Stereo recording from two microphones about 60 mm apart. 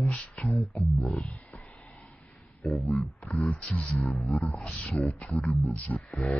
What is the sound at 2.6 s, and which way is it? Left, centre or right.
Speech, centre.